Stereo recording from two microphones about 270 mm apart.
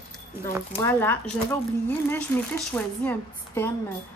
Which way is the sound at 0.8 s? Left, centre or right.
Centre.